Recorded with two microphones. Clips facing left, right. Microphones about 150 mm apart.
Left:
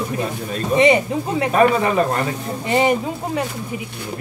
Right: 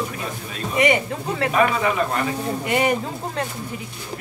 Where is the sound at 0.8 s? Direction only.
20° left (ahead or behind).